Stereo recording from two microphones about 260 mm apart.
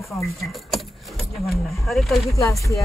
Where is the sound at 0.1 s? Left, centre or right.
Centre.